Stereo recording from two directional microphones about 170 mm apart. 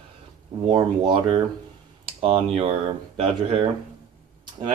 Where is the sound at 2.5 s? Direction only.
35° right (ahead or behind).